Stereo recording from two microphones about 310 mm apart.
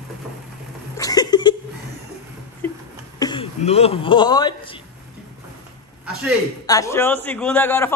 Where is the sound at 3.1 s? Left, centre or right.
Centre.